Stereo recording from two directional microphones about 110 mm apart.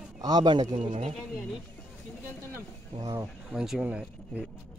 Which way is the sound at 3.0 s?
35° right (ahead or behind).